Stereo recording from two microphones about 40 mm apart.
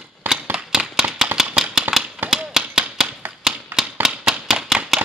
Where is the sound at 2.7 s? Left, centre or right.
Centre.